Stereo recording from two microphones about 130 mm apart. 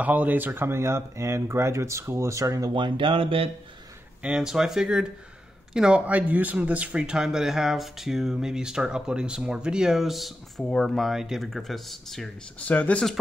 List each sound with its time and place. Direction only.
0.0 s speech: 10° right (ahead or behind)
2.7 s speech: 40° right (ahead or behind)
4.2 s speech: 5° right (ahead or behind); by 13.1 s 10° left (ahead or behind)